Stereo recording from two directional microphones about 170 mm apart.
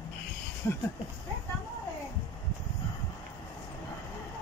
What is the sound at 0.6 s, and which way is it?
Speech, 15° left (ahead or behind).